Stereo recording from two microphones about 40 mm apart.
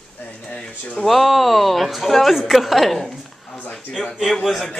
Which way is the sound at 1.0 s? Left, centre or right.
Centre.